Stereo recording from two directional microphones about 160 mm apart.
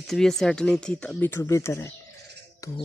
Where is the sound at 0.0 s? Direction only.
Centre (ahead or behind).